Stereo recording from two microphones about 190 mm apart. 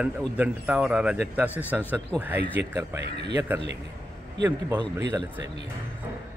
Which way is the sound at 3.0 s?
65° right (ahead or behind).